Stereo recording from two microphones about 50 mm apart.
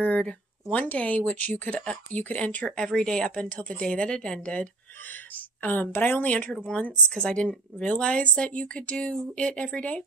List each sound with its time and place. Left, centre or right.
0.0 s speech: left
2.8 s speech: centre
3.4 s speech: left
5.7 s a woman's voice: left
6.2 s speech: left
7.2 s speech: centre